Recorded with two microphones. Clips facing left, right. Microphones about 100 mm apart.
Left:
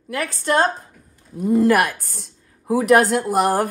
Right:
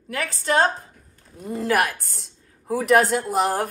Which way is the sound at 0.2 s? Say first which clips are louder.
Left 2 dB; 50° left (ahead or behind).